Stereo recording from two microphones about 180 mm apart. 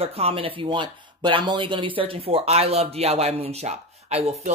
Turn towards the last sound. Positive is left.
turn(degrees=-35)  # may be behind; listen again after turning